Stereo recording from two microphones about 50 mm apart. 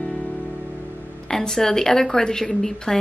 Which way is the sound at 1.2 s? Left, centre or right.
Centre.